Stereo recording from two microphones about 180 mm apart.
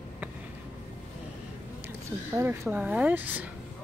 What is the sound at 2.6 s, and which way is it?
Speech, 5° right (ahead or behind).